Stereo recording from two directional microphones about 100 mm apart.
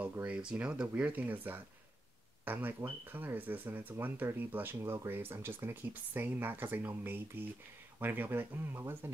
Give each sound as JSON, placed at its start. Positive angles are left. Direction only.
{"t": 0.0, "sound": "speech", "side_deg": -15}